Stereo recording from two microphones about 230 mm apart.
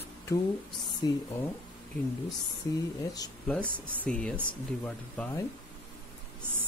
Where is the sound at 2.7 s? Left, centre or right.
Centre.